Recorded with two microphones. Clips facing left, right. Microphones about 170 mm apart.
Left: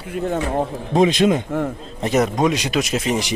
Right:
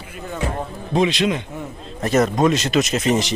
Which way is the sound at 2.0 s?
15° left (ahead or behind).